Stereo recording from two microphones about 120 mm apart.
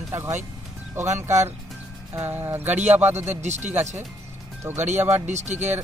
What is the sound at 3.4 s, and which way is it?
Speech, 75° right (ahead or behind).